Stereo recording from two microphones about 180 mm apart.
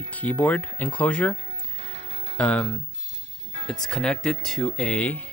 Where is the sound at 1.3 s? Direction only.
35° right (ahead or behind).